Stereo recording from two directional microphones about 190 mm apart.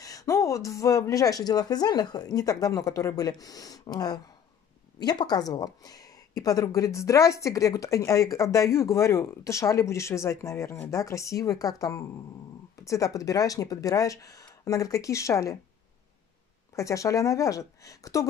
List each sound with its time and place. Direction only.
0.0 s a woman's voice: 20° left (ahead or behind)
16.7 s a woman's voice: 15° left (ahead or behind)